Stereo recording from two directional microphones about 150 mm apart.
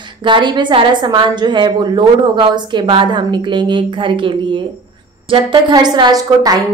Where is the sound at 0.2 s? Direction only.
30° right (ahead or behind).